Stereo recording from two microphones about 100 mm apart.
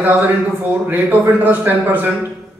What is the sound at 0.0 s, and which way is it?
A man's voice, 20° right (ahead or behind).